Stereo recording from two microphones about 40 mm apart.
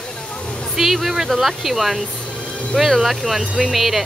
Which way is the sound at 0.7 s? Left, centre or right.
Centre.